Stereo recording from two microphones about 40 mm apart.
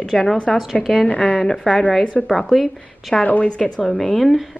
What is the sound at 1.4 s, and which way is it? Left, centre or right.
A woman's voice, centre.